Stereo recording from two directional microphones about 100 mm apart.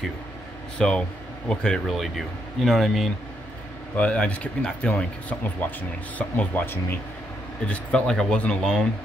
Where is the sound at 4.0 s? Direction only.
10° left (ahead or behind).